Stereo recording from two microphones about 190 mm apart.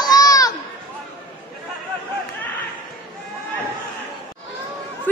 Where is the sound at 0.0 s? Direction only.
20° left (ahead or behind).